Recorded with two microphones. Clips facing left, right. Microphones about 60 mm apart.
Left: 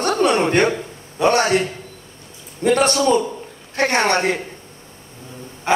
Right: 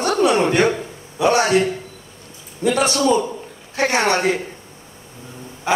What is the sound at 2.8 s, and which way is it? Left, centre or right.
Speech, centre.